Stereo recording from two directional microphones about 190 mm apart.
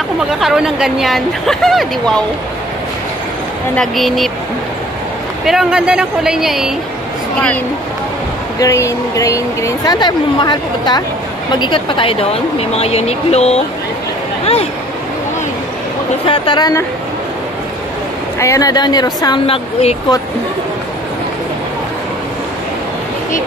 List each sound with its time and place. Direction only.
0.3 s speech: 5° right (ahead or behind)
3.7 s speech: centre (ahead or behind)
5.4 s speech: centre (ahead or behind)
8.5 s a woman's voice: 15° left (ahead or behind); by 14.7 s 30° left (ahead or behind)
16.3 s speech: 25° left (ahead or behind)
18.4 s speech: 15° left (ahead or behind)